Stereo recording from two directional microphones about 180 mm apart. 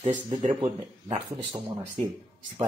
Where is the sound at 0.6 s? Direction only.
30° right (ahead or behind).